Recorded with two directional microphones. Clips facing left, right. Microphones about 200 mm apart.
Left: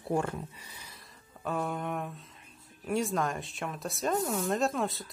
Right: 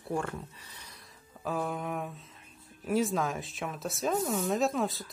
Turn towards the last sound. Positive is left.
turn(degrees=0)  # may be behind; listen again after turning